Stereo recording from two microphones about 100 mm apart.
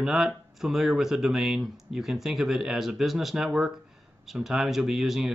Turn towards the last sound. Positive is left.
turn(degrees=-5)  # may be behind; listen again after turning